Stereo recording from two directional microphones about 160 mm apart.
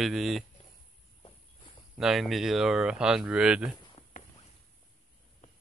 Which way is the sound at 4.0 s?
40° left (ahead or behind).